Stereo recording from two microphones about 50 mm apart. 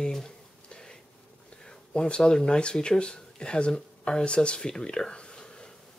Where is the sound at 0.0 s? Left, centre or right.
Centre.